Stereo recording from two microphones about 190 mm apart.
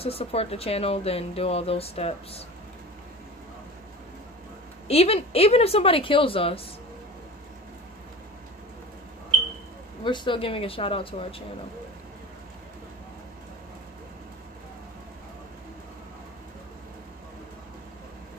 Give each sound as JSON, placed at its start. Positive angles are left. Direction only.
{"t": 0.0, "sound": "speech", "side_deg": 30}
{"t": 4.8, "sound": "speech", "side_deg": 30}
{"t": 10.0, "sound": "speech", "side_deg": 25}